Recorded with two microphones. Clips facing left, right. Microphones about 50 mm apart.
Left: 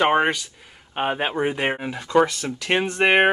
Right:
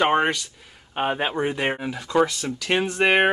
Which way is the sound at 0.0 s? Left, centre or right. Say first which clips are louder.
Left 1 dB; centre.